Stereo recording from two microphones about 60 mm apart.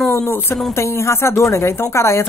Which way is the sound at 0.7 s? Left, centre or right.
Left.